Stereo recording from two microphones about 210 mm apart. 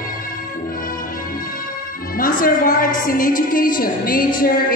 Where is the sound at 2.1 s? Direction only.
40° left (ahead or behind).